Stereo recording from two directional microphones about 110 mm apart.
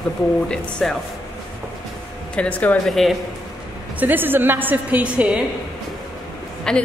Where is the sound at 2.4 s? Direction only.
15° left (ahead or behind).